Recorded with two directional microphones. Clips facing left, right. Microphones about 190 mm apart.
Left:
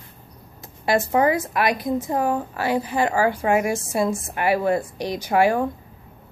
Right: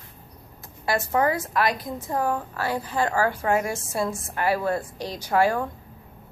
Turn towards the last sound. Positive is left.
turn(degrees=15)  # may be behind; listen again after turning